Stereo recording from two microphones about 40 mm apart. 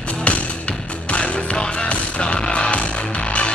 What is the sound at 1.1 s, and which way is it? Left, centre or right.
Music, left.